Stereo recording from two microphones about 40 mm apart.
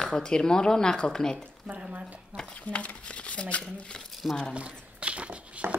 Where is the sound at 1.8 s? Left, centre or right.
Right.